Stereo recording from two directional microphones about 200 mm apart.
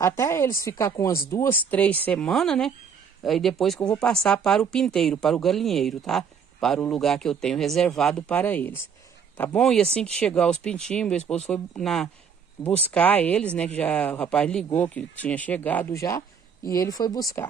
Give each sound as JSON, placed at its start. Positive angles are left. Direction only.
{"t": 0.0, "sound": "speech", "side_deg": 15}
{"t": 12.6, "sound": "speech", "side_deg": 15}